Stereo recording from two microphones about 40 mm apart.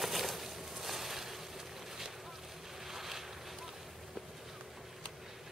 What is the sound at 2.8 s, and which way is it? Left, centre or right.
Boat, centre.